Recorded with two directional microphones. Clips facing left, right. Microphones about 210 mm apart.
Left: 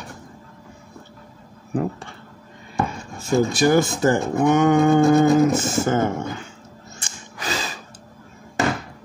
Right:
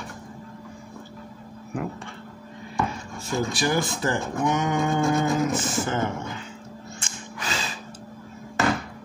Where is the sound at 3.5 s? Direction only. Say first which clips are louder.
Left 7 dB; 45° left (ahead or behind).